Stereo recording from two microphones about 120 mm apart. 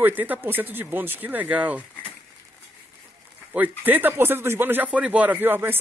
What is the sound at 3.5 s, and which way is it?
Speech, 15° right (ahead or behind).